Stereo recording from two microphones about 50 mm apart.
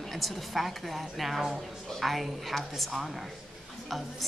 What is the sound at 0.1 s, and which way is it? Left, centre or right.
A woman's voice, centre.